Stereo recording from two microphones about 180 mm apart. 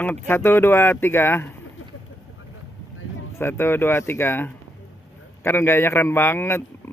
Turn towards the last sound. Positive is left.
turn(degrees=15)  # may be behind; listen again after turning